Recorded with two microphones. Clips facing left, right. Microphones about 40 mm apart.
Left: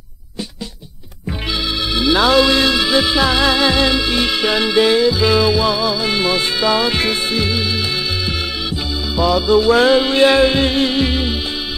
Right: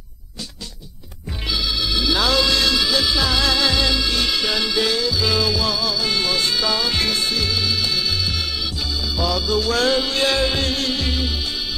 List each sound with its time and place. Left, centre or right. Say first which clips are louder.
2.0 s music: left 7 dB; left
9.1 s music: left 9 dB; left